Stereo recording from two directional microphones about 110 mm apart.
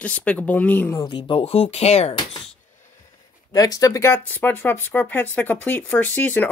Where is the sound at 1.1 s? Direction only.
45° left (ahead or behind); by 2.1 s 70° left (ahead or behind).